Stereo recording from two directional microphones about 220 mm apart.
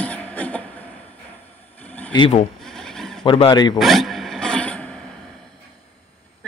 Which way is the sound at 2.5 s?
Centre (ahead or behind).